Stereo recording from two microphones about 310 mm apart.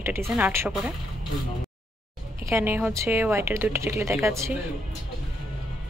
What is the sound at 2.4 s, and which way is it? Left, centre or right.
Speech, centre.